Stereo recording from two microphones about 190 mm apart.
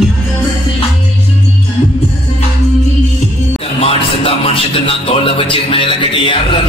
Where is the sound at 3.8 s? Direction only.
30° left (ahead or behind).